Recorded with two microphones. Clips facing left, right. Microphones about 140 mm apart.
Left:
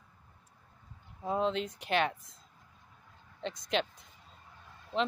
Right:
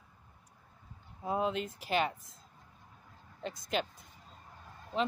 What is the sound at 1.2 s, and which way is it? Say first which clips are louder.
Speech: left 2 dB; 5° right (ahead or behind).